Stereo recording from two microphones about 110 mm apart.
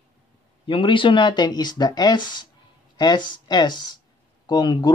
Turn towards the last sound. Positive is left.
turn(degrees=40)  # may be behind; listen again after turning